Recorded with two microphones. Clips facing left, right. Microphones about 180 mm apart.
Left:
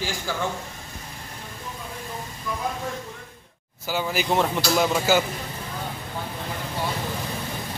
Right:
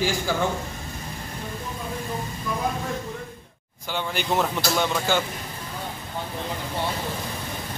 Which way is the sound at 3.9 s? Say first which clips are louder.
Left 2 dB; 5° left (ahead or behind).